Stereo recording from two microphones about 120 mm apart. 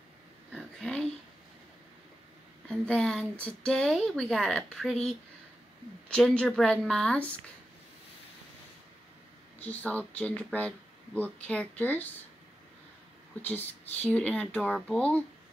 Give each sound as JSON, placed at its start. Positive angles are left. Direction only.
{"t": 0.5, "sound": "a sound", "side_deg": 5}
{"t": 2.7, "sound": "speech", "side_deg": 5}
{"t": 6.0, "sound": "a woman's voice", "side_deg": 10}
{"t": 9.6, "sound": "speech", "side_deg": 15}
{"t": 13.4, "sound": "speech", "side_deg": 15}